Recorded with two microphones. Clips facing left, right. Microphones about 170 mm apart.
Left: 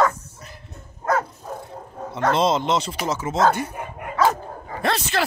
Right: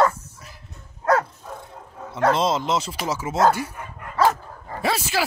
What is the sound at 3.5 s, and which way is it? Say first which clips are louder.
Dog: left 2 dB; 55° left (ahead or behind).